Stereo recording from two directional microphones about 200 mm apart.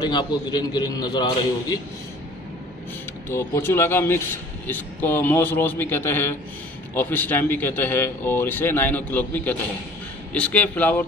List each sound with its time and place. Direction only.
0.0 s a man's voice: 20° left (ahead or behind)
3.3 s a man's voice: 10° left (ahead or behind)